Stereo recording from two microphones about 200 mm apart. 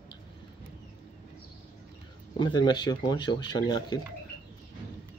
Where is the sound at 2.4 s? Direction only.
20° left (ahead or behind).